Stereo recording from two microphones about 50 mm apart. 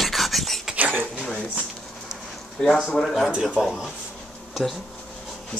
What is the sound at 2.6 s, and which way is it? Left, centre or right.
Speech, centre.